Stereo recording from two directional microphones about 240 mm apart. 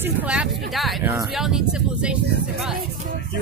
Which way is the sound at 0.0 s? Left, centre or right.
Centre.